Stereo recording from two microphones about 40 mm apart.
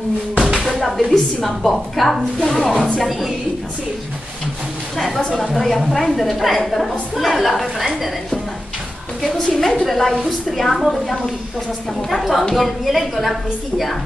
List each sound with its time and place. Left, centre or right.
0.7 s a sound: centre
1.1 s a woman's voice: centre
4.9 s a woman's voice: centre
9.2 s a woman's voice: centre
12.1 s a woman's voice: centre